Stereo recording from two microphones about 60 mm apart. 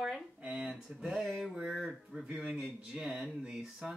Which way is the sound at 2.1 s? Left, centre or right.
Centre.